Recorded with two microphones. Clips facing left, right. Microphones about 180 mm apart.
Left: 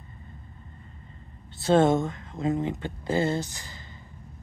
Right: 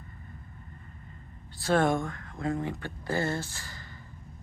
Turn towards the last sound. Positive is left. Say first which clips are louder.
# left 4 dB
turn(degrees=20)  # may be behind; listen again after turning